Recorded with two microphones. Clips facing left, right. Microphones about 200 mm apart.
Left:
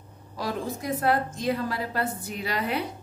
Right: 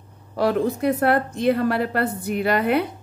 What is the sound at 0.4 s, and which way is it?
A woman's voice, 65° right (ahead or behind).